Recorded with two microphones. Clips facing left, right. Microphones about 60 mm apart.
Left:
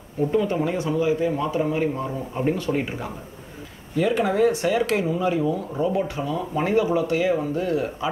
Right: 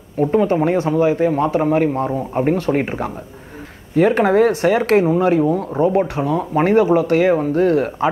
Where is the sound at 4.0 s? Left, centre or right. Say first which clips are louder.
Right 7 dB; right.